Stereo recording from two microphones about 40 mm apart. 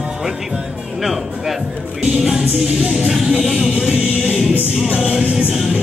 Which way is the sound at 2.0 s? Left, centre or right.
Centre.